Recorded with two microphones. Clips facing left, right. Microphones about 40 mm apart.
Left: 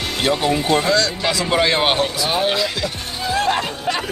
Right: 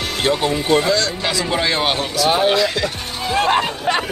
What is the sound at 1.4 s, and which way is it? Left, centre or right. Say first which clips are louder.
Speech: left 2 dB; left.